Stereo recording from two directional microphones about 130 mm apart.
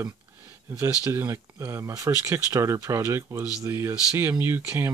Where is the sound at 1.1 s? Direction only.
15° right (ahead or behind).